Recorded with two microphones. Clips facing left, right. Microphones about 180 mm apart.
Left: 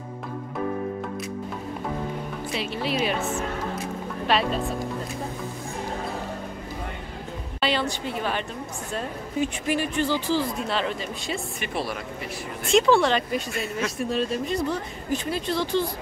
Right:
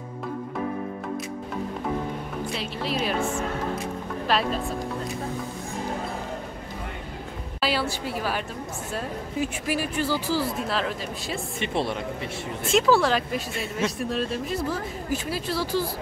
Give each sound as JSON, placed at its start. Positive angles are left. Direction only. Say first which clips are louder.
{"t": 2.5, "sound": "speech", "louder": "left 4 dB", "side_deg": 0}
{"t": 4.3, "sound": "speech", "louder": "left 1 dB", "side_deg": 0}
{"t": 7.6, "sound": "speech", "louder": "left 1 dB", "side_deg": -5}
{"t": 11.6, "sound": "speech", "louder": "right 5 dB", "side_deg": -25}
{"t": 12.6, "sound": "speech", "louder": "left 1 dB", "side_deg": -5}